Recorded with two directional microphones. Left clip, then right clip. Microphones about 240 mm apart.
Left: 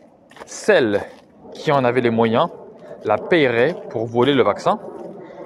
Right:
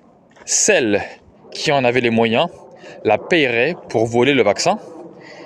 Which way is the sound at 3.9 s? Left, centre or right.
Right.